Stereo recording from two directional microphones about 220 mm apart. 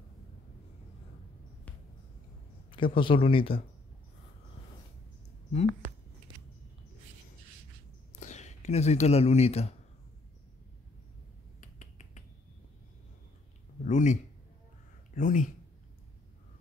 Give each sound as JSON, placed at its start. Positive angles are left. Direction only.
{"t": 2.7, "sound": "speech", "side_deg": 20}
{"t": 8.2, "sound": "speech", "side_deg": 30}
{"t": 11.6, "sound": "finger snapping", "side_deg": 35}
{"t": 13.8, "sound": "a sound", "side_deg": 35}
{"t": 15.1, "sound": "speech", "side_deg": 35}